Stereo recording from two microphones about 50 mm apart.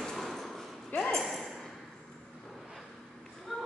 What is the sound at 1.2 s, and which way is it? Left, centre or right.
Ping, centre.